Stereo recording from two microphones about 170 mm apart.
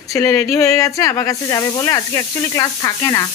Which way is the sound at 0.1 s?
20° left (ahead or behind).